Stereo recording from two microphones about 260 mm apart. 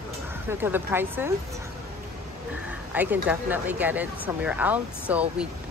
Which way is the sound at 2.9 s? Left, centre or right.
Centre.